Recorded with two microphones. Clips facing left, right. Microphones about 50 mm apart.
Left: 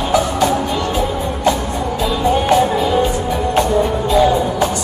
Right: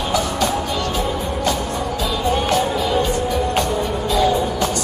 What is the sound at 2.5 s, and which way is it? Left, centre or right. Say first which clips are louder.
Music: left 5 dB; centre.